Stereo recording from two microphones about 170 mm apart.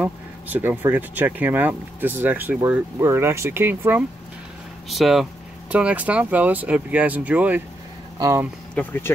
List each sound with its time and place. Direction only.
0.0 s speech: 10° right (ahead or behind)
4.8 s speech: centre (ahead or behind); by 8.5 s 15° right (ahead or behind)
8.7 s speech: 15° left (ahead or behind)